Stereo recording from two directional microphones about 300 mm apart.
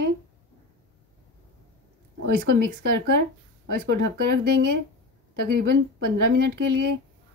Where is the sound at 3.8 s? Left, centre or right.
Right.